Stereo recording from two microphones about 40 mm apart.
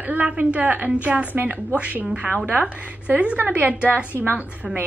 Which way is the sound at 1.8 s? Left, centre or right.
Right.